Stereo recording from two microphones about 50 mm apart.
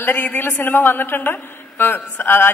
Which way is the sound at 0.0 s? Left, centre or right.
Left.